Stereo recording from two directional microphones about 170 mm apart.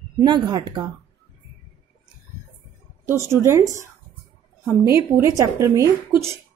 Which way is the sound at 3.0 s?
15° right (ahead or behind).